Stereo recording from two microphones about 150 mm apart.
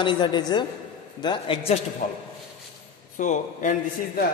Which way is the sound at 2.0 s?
70° left (ahead or behind).